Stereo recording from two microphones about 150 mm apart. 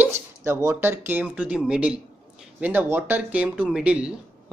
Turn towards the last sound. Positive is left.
turn(degrees=-5)  # may be behind; listen again after turning